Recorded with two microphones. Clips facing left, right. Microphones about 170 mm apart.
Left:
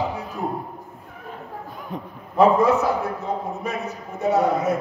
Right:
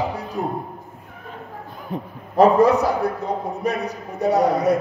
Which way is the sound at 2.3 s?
35° right (ahead or behind).